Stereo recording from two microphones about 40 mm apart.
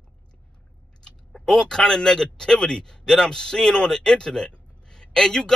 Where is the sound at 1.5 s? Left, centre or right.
Centre.